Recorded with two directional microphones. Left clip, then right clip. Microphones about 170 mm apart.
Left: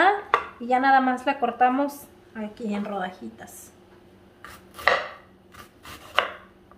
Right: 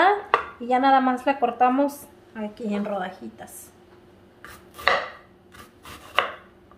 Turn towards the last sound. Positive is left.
turn(degrees=0)  # may be behind; listen again after turning